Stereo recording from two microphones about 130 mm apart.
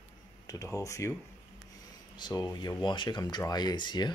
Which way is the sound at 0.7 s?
25° left (ahead or behind).